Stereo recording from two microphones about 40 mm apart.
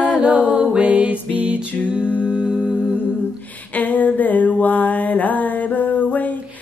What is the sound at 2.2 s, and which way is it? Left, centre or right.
Humming, right.